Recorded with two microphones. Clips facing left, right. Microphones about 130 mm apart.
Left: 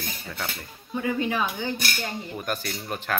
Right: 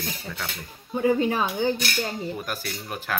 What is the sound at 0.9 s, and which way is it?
Speech, 30° right (ahead or behind).